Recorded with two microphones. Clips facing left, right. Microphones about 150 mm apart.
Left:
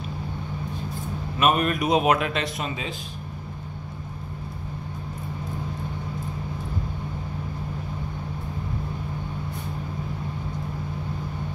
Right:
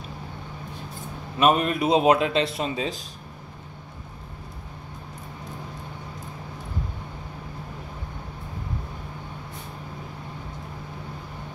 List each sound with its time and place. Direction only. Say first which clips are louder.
1.4 s a man's voice: right 2 dB; 25° right (ahead or behind)